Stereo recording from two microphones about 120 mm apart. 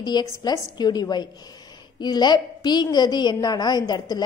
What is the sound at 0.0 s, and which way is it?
A woman's voice, 35° left (ahead or behind).